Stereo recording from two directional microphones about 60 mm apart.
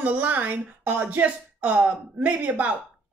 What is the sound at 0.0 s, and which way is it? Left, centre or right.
Speech, right.